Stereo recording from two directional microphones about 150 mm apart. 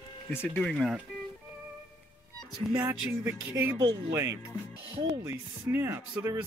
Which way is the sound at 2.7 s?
15° right (ahead or behind).